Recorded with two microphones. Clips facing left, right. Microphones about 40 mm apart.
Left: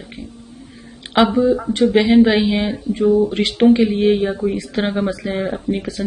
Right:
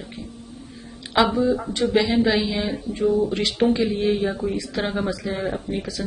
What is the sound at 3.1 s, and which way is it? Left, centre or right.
Speech, centre.